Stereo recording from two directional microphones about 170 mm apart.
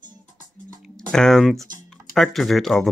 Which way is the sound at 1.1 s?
Centre (ahead or behind).